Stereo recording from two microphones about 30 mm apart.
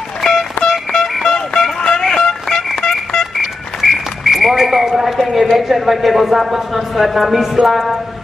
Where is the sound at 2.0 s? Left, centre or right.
Centre.